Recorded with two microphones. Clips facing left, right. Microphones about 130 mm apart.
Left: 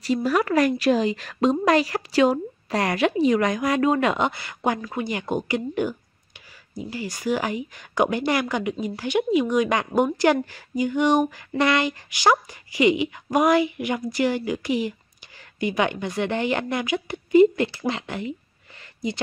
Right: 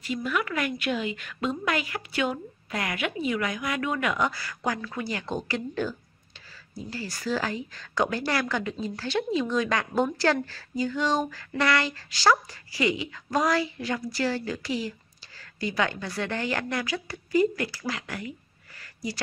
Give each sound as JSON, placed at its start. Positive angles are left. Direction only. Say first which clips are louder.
{"t": 0.0, "sound": "a woman's voice", "louder": "left 7 dB", "side_deg": 35}